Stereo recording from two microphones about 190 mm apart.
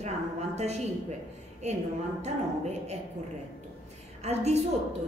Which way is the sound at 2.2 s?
35° right (ahead or behind).